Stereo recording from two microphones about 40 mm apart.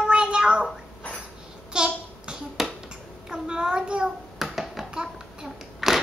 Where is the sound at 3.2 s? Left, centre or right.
Centre.